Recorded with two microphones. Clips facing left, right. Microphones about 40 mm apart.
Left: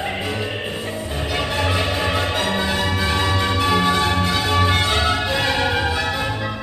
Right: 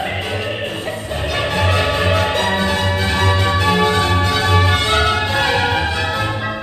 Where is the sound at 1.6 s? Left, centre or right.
Centre.